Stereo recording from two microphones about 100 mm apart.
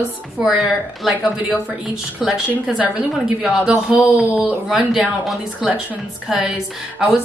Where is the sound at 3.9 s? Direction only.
5° right (ahead or behind).